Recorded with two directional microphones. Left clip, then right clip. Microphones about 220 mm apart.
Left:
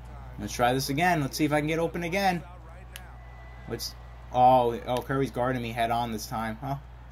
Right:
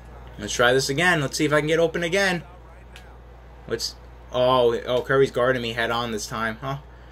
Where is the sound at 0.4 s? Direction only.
45° left (ahead or behind).